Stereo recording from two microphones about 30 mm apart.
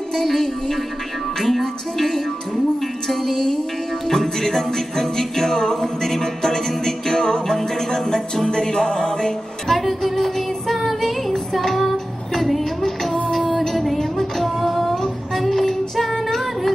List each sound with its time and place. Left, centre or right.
0.1 s music: centre
9.8 s music: centre
11.0 s child singing: centre
12.4 s a sound: centre
13.3 s music: centre
13.9 s child singing: centre